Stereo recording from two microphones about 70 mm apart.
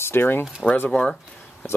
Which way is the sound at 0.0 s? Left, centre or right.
Left.